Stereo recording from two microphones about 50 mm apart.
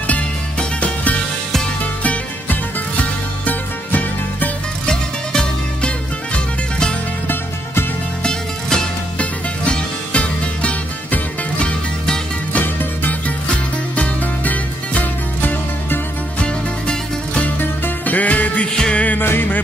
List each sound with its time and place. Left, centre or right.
0.6 s music: left
3.0 s music: left
4.8 s music: centre
8.2 s music: centre
12.5 s music: left
16.3 s music: centre
17.6 s music: left
18.1 s music: left
18.8 s music: centre
19.0 s music: left